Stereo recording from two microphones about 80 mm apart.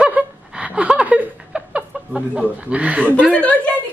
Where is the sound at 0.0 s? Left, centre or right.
Centre.